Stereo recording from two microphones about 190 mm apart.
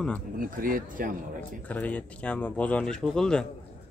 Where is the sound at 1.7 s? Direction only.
5° left (ahead or behind).